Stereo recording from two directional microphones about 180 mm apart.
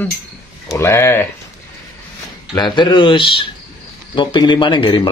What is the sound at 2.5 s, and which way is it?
Speech, 25° left (ahead or behind).